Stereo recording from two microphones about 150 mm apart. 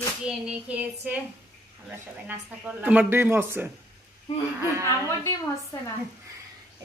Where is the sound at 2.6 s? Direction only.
10° right (ahead or behind).